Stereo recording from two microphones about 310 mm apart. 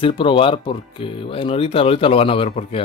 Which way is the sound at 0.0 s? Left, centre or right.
Centre.